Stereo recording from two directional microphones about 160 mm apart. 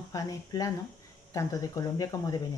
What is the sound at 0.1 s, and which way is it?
Speech, 20° left (ahead or behind).